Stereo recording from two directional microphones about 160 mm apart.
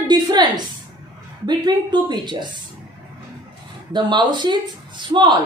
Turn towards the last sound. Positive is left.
turn(degrees=-30)  # may be behind; listen again after turning